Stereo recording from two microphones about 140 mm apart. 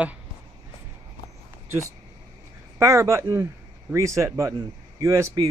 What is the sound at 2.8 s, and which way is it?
A man's voice, 20° right (ahead or behind).